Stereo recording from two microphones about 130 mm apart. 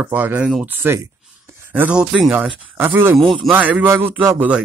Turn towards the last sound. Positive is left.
turn(degrees=-15)  # may be behind; listen again after turning